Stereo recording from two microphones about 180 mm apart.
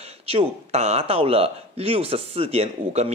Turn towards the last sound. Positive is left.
turn(degrees=-35)  # may be behind; listen again after turning